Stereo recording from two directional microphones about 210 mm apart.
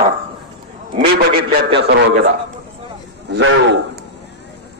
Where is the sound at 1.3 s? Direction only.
45° right (ahead or behind).